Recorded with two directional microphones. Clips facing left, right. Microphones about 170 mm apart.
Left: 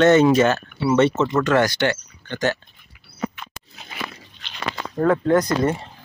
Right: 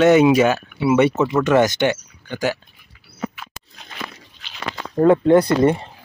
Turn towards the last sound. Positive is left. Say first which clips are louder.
# right 5 dB
turn(degrees=-25)  # may be behind; listen again after turning